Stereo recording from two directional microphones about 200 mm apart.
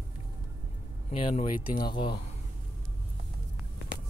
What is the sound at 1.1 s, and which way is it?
Speech, 25° left (ahead or behind).